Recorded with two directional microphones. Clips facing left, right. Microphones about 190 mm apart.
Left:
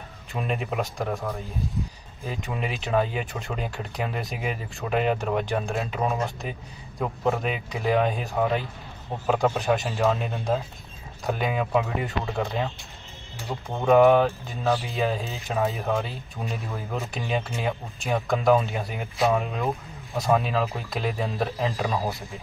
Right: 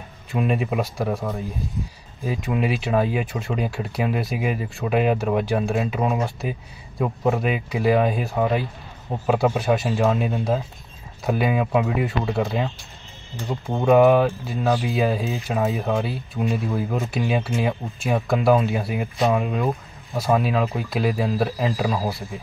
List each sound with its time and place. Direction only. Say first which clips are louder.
0.3 s speech: right 6 dB; 5° right (ahead or behind)
13.7 s speech: right 2 dB; 15° right (ahead or behind)
14.0 s speech: right 2 dB; 5° right (ahead or behind)